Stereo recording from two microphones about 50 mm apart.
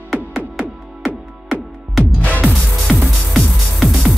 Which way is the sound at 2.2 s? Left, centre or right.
Left.